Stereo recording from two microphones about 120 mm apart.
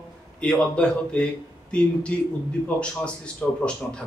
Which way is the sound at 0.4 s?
5° left (ahead or behind).